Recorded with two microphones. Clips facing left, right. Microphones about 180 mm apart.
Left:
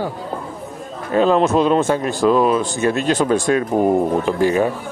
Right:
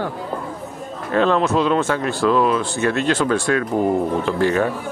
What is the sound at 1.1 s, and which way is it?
Speech, 15° left (ahead or behind).